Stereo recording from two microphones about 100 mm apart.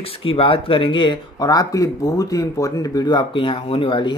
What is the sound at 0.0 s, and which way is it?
Speech, 65° left (ahead or behind).